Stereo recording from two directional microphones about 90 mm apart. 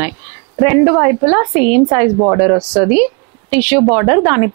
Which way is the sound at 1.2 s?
10° right (ahead or behind).